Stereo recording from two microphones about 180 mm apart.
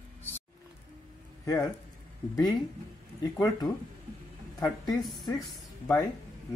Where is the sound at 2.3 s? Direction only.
20° left (ahead or behind).